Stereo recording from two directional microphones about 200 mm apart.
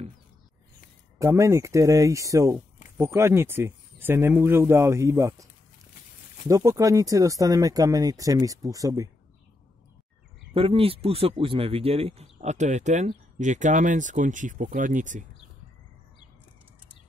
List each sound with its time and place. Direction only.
1.2 s speech: 15° right (ahead or behind)
6.5 s speech: 15° right (ahead or behind)
10.5 s speech: 25° right (ahead or behind)